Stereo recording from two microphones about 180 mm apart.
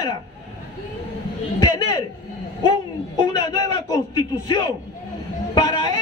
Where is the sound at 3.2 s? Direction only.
25° left (ahead or behind).